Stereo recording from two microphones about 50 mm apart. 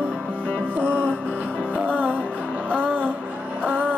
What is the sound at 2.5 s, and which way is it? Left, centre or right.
Music, right.